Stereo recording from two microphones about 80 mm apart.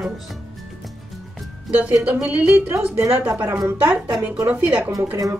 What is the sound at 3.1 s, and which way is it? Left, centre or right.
A woman's voice, centre.